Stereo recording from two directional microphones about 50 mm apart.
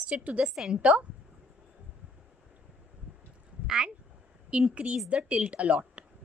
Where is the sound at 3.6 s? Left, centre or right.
Centre.